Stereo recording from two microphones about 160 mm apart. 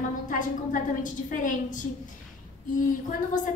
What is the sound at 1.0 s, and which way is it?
A woman's voice, 55° left (ahead or behind).